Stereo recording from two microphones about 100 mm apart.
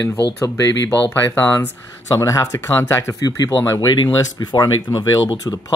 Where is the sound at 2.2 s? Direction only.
30° left (ahead or behind).